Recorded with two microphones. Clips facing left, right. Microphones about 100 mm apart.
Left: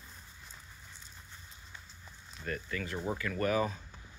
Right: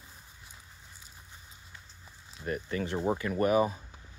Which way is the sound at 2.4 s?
25° right (ahead or behind).